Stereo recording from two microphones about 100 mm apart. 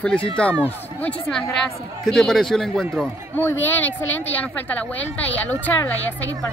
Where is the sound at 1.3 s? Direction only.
5° left (ahead or behind).